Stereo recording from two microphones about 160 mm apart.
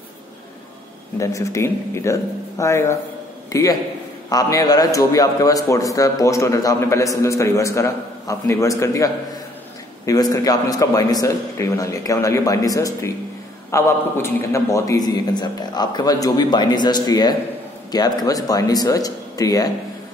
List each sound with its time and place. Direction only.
1.2 s a man's voice: 20° left (ahead or behind)
4.3 s a man's voice: 25° left (ahead or behind)